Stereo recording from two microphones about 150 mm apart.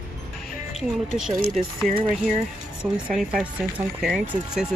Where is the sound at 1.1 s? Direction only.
5° right (ahead or behind).